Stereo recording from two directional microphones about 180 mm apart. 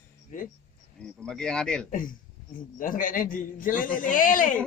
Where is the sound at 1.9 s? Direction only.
50° left (ahead or behind).